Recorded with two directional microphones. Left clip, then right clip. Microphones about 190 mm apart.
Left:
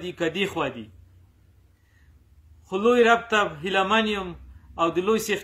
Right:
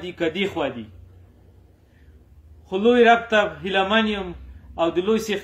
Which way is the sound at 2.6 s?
10° left (ahead or behind).